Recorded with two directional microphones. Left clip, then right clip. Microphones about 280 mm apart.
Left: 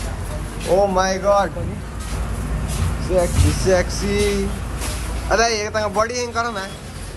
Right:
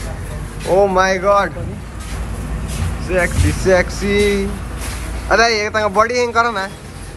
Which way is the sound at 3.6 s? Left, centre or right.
Centre.